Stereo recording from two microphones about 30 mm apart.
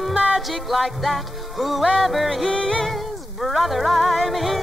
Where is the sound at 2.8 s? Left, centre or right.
Centre.